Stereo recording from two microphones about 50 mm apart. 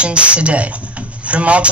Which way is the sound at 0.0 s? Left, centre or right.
Right.